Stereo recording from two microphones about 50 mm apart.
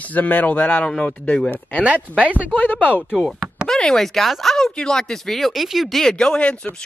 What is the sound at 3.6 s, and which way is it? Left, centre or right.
Speech, centre.